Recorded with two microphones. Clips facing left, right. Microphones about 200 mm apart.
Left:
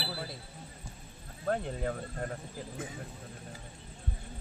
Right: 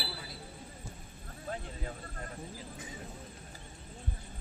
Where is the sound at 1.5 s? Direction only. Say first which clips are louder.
Left 9 dB; 60° left (ahead or behind).